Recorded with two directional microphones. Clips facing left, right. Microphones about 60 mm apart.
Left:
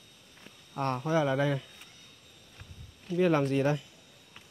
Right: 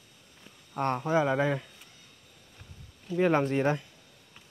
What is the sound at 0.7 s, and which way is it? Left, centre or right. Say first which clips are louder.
Speech: right 2 dB; right.